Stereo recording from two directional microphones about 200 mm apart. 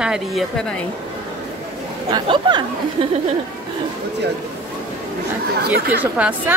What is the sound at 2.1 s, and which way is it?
Speech, 20° right (ahead or behind).